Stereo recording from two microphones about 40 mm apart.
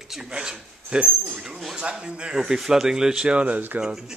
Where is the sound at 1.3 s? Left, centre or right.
Centre.